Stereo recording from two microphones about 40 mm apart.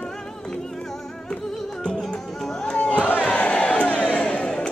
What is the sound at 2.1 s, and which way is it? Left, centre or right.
Music, centre.